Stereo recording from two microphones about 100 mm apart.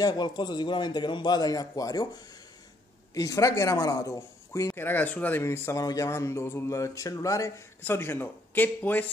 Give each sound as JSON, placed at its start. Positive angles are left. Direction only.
{"t": 0.0, "sound": "a man's voice", "side_deg": 45}
{"t": 3.2, "sound": "speech", "side_deg": 35}